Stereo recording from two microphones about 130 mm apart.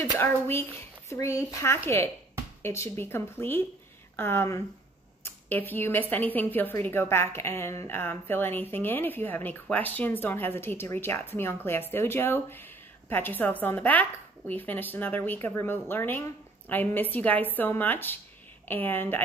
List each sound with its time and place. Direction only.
0.2 s a woman's voice: 15° left (ahead or behind)